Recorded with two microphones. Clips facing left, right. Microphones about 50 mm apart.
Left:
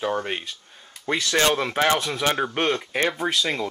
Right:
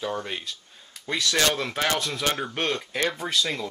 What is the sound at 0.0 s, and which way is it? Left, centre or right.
Speech, left.